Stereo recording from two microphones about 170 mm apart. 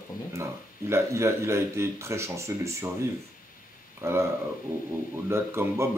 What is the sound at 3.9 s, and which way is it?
Speech, 15° right (ahead or behind).